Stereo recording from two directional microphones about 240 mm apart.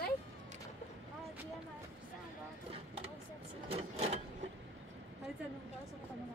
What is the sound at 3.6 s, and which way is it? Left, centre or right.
Sewing machine, right.